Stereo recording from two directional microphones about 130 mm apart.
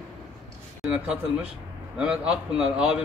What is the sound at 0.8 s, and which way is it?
A man's voice, 5° right (ahead or behind).